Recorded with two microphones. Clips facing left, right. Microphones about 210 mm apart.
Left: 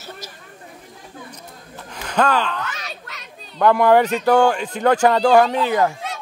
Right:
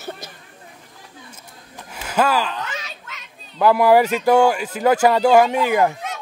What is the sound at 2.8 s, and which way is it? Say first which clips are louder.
Children playing: left 3 dB; 40° left (ahead or behind).